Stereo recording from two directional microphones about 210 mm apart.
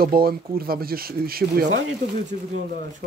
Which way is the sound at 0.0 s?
45° right (ahead or behind).